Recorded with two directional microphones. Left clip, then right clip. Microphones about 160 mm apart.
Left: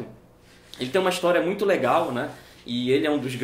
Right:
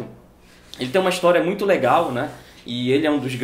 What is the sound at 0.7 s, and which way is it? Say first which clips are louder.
Speech: right 3 dB; 20° right (ahead or behind).